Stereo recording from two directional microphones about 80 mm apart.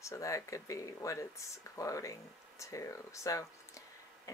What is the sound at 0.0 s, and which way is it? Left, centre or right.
Speech, left.